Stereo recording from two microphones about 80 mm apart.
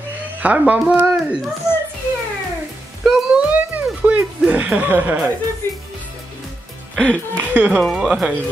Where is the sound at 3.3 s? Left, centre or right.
Centre.